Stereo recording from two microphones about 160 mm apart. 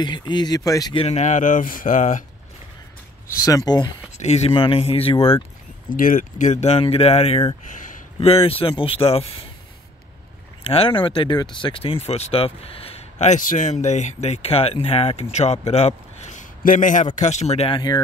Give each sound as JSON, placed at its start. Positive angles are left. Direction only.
{"t": 0.0, "sound": "speech", "side_deg": 30}
{"t": 0.9, "sound": "a man's voice", "side_deg": 45}
{"t": 3.4, "sound": "speech", "side_deg": 25}
{"t": 4.2, "sound": "speech", "side_deg": 40}
{"t": 5.9, "sound": "speech", "side_deg": 60}
{"t": 7.6, "sound": "a sound", "side_deg": 55}
{"t": 8.3, "sound": "speech", "side_deg": 35}
{"t": 10.6, "sound": "a man's voice", "side_deg": 35}
{"t": 17.7, "sound": "speech", "side_deg": 25}